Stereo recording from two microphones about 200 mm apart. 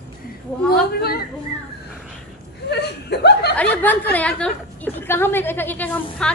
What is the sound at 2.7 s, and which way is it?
Chuckle, 55° left (ahead or behind).